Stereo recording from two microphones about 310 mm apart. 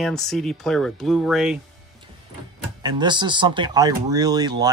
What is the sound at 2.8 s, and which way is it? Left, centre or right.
Speech, centre.